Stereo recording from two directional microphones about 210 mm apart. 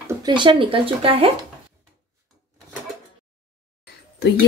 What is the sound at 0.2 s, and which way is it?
Speech, 20° right (ahead or behind).